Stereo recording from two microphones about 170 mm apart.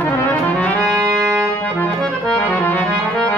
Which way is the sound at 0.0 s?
10° left (ahead or behind).